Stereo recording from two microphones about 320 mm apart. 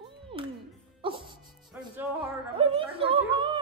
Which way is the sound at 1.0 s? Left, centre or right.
Centre.